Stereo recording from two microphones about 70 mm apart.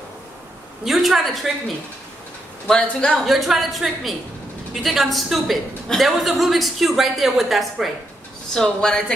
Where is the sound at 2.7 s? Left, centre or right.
Centre.